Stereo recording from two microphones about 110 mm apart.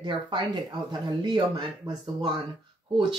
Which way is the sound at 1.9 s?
40° right (ahead or behind).